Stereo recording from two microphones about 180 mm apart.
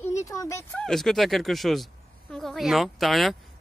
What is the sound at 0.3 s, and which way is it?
Speech, 15° left (ahead or behind).